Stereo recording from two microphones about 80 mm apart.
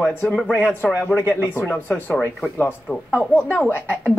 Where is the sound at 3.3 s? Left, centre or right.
Left.